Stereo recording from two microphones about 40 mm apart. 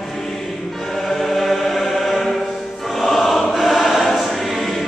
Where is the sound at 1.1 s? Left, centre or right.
Centre.